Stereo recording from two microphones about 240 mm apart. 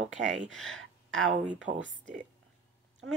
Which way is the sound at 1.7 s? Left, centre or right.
Right.